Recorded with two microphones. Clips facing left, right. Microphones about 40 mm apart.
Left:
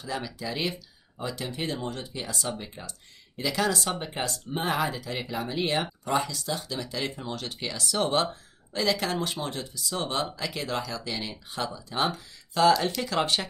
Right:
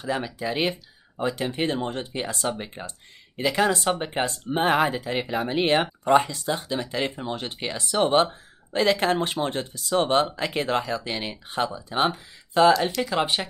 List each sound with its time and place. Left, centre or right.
0.0 s speech: right
13.1 s speech: centre